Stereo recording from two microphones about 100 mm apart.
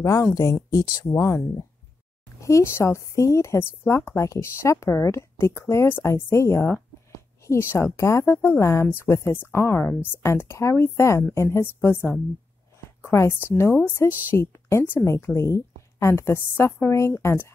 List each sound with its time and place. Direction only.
0.0 s speech: 30° left (ahead or behind)